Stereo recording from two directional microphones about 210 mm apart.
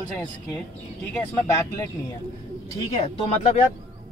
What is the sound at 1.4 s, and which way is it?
Speech, 15° left (ahead or behind).